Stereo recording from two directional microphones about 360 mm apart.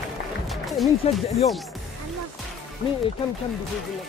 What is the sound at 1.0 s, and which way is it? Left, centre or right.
Speech, centre.